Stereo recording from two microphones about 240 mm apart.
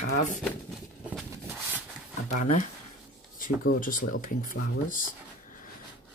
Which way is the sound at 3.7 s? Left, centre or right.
Left.